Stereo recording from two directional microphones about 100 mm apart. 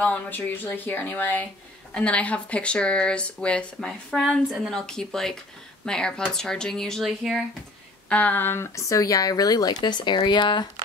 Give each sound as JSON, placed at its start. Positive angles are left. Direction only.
{"t": 0.0, "sound": "speech", "side_deg": 15}
{"t": 8.1, "sound": "speech", "side_deg": 15}